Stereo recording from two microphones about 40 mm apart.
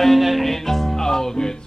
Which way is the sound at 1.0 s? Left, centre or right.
Centre.